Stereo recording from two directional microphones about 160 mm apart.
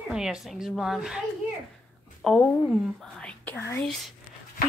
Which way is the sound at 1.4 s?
5° right (ahead or behind).